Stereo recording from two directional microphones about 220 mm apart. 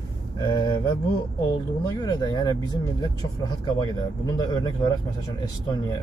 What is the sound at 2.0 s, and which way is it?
Speech, 20° left (ahead or behind).